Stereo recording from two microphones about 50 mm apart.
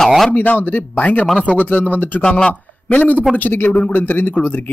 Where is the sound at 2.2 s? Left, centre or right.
Left.